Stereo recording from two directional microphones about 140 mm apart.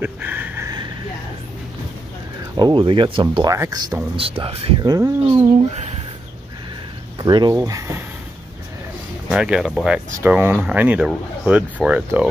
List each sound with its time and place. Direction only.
0.0 s a sound: 10° right (ahead or behind)
2.5 s speech: 35° right (ahead or behind)
3.4 s speech: 25° right (ahead or behind)
4.2 s speech: 45° right (ahead or behind)
4.8 s speech: 25° right (ahead or behind)
7.2 s speech: 30° right (ahead or behind)
9.3 s speech: 5° right (ahead or behind)